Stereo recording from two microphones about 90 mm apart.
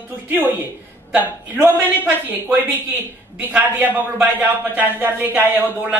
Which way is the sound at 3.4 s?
20° right (ahead or behind).